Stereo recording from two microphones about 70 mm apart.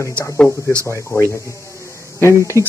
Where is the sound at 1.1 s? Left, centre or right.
Left.